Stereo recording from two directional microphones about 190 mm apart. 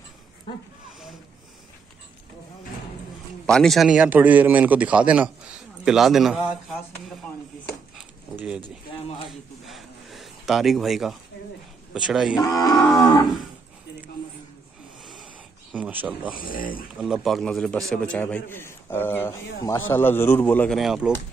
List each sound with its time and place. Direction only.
3.4 s a man's voice: 5° left (ahead or behind)
9.7 s a sound: centre (ahead or behind)
11.9 s a man's voice: 5° right (ahead or behind)
12.4 s roaring cats: 20° left (ahead or behind)
12.8 s a man's voice: centre (ahead or behind)
15.7 s speech: 10° right (ahead or behind)
16.3 s speech: 50° left (ahead or behind)
17.0 s a man's voice: centre (ahead or behind)